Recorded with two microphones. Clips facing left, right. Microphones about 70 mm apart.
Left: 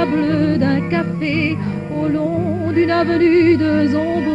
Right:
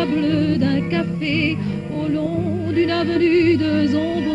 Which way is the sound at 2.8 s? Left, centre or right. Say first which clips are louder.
Left 3 dB; left.